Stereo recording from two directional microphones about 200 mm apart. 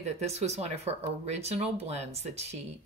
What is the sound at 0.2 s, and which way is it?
Speech, 30° right (ahead or behind).